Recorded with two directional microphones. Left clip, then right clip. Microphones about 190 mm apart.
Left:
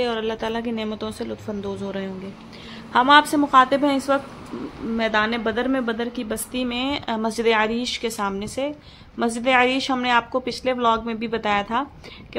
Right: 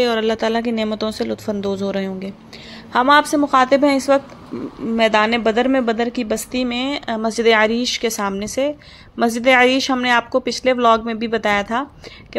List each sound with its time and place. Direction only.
0.0 s a woman's voice: 20° right (ahead or behind)